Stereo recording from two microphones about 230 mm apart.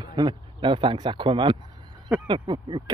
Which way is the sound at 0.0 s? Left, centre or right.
Centre.